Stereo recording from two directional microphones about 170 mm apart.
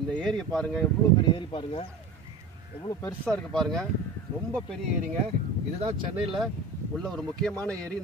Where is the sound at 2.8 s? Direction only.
15° left (ahead or behind).